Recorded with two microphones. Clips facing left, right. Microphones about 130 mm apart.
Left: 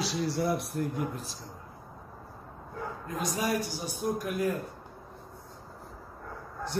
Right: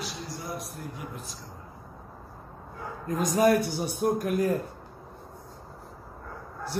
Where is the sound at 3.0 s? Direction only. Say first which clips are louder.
Right 9 dB; 45° right (ahead or behind).